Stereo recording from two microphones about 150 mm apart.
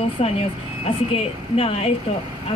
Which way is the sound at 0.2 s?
40° left (ahead or behind).